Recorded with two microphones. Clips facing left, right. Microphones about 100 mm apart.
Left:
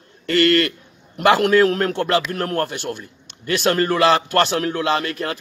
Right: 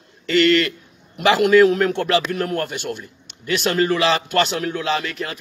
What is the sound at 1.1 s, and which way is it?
A man's voice, 55° left (ahead or behind).